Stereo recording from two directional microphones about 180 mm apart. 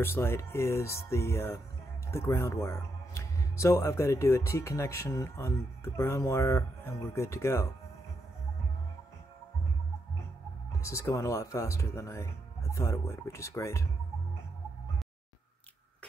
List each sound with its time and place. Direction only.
0.0 s speech: 15° left (ahead or behind)
10.8 s speech: 15° left (ahead or behind)